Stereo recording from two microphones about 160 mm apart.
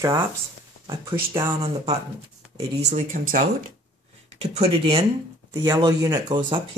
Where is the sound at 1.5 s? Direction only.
35° right (ahead or behind); by 3.4 s 55° right (ahead or behind).